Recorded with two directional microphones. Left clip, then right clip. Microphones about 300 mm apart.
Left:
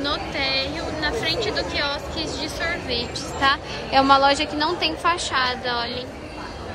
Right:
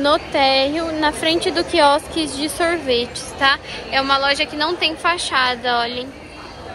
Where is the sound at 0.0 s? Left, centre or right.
Centre.